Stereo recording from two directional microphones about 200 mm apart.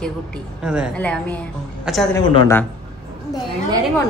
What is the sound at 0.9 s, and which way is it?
A woman's voice, 5° left (ahead or behind).